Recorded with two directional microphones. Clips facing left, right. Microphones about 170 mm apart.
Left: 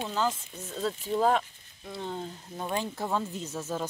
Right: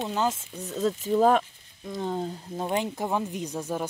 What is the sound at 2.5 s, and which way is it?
Speech, 25° right (ahead or behind).